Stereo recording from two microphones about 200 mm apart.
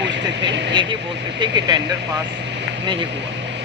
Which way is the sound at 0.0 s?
60° right (ahead or behind).